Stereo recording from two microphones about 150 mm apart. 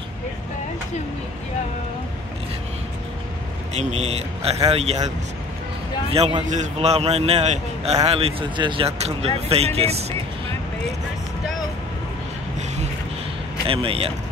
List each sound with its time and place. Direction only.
3.7 s speech: 45° right (ahead or behind)
6.5 s speech: 50° right (ahead or behind)
13.7 s speech: 40° right (ahead or behind)